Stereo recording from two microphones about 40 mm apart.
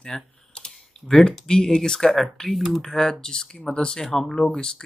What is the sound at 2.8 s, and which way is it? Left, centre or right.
Speech, centre.